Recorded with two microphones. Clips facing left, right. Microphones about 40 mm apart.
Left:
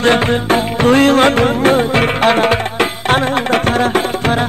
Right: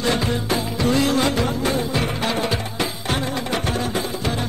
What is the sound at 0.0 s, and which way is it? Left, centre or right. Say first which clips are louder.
Music: left 9 dB; left.